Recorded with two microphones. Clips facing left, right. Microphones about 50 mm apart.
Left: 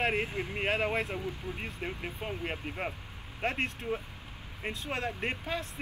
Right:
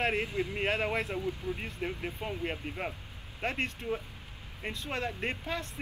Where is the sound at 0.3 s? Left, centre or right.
Left.